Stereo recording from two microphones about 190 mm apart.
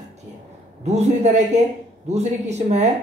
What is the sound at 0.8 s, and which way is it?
Speech, 35° right (ahead or behind).